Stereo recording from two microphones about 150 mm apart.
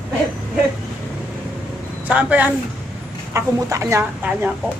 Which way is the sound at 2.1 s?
10° right (ahead or behind).